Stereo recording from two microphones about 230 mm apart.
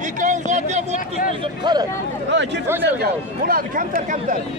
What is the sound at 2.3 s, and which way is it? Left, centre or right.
Speech, right.